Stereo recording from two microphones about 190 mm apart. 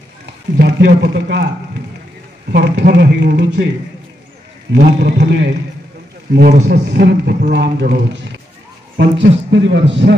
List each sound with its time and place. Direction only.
0.6 s a man's voice: 65° right (ahead or behind)
2.5 s a man's voice: 60° right (ahead or behind)
4.7 s a man's voice: 65° right (ahead or behind)